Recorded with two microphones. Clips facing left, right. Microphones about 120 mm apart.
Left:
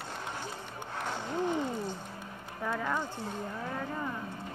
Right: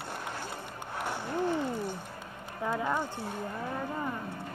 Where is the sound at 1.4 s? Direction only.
20° left (ahead or behind).